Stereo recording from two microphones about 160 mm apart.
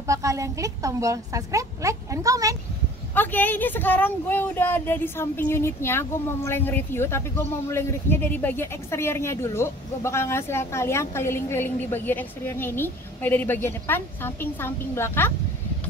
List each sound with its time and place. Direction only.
0.0 s a woman's voice: 20° right (ahead or behind)
3.2 s speech: 10° left (ahead or behind)